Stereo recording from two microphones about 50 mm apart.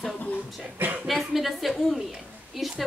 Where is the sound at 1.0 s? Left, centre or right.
Centre.